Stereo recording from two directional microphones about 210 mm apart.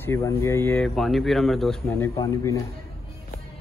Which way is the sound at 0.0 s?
10° left (ahead or behind).